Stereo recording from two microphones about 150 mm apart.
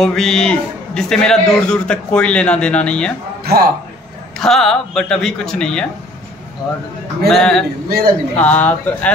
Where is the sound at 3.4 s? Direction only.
90° right.